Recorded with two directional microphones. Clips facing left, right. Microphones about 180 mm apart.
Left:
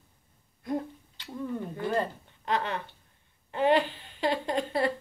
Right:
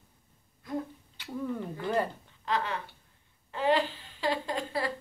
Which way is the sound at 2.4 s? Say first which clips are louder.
Left 2 dB; 20° left (ahead or behind).